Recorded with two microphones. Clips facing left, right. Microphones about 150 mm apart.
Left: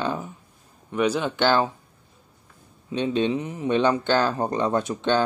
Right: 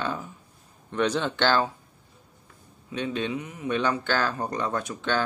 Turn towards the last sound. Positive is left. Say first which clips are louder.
# left 5 dB
turn(degrees=20)  # may be behind; listen again after turning